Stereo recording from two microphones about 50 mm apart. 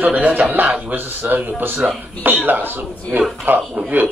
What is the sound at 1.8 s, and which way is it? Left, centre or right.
Speech, centre.